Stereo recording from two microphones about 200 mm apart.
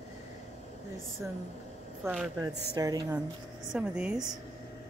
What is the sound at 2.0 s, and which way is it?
Speech, 5° right (ahead or behind).